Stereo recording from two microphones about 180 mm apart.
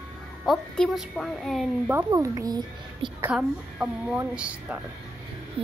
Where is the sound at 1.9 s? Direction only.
15° right (ahead or behind).